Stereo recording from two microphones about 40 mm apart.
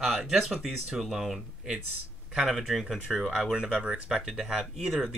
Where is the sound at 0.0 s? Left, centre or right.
Centre.